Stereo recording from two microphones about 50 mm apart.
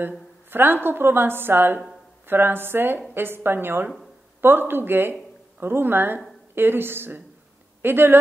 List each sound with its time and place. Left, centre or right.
0.5 s a woman's voice: right